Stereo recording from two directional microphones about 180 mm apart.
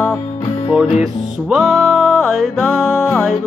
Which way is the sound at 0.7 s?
5° right (ahead or behind).